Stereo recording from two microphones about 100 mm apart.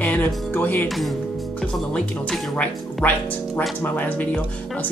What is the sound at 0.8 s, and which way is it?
Speech, centre (ahead or behind).